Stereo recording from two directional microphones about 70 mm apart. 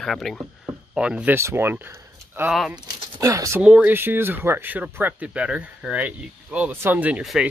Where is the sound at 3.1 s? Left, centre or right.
Right.